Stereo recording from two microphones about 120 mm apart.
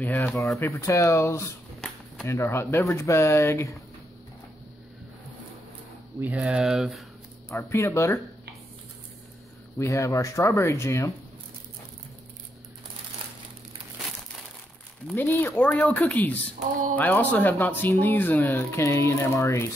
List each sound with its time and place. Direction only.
0.1 s speech: 25° left (ahead or behind)
6.2 s speech: 10° right (ahead or behind)
7.5 s speech: 25° left (ahead or behind)
9.8 s speech: 25° left (ahead or behind)
15.1 s speech: 15° left (ahead or behind)